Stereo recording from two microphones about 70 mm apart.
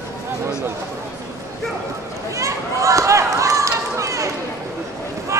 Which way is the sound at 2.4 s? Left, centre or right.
Right.